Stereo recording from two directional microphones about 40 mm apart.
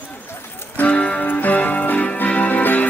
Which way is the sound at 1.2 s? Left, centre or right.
Left.